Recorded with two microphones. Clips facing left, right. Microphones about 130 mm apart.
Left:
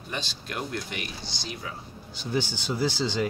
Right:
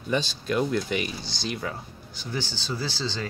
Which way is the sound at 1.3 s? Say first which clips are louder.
Right 6 dB; 90° right.